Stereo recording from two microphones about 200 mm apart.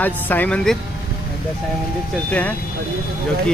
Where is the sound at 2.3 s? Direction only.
10° left (ahead or behind).